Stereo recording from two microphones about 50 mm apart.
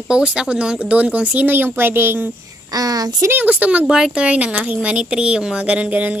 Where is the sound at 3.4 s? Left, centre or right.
Right.